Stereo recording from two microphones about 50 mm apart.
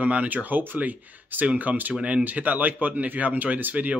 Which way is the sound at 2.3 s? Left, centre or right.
Right.